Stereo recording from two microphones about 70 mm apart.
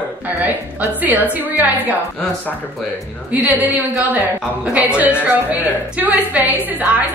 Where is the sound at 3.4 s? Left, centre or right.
Right.